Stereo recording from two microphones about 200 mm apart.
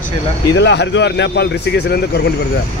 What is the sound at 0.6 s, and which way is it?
Speech, 60° left (ahead or behind).